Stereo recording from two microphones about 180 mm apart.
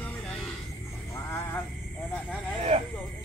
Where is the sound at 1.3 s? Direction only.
15° left (ahead or behind).